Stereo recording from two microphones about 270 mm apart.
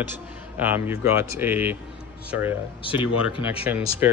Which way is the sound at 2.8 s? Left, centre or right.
Centre.